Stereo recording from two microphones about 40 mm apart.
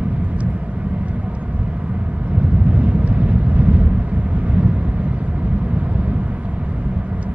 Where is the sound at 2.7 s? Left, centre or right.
Right.